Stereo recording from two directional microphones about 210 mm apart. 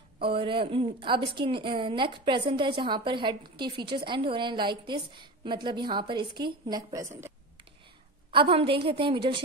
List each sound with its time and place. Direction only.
0.2 s a woman's voice: 25° right (ahead or behind)
8.3 s a woman's voice: 25° right (ahead or behind)